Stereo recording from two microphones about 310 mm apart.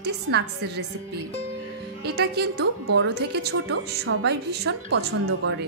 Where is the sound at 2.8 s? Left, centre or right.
Right.